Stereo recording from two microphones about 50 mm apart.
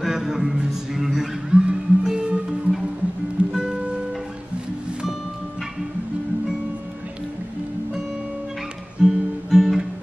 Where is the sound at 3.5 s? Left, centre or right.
Centre.